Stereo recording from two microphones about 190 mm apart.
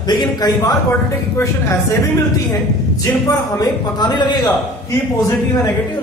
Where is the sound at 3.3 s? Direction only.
20° left (ahead or behind).